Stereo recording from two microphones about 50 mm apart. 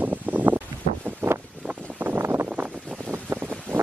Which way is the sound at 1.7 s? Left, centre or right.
Right.